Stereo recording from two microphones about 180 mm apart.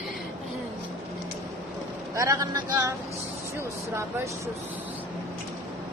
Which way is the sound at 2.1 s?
15° right (ahead or behind).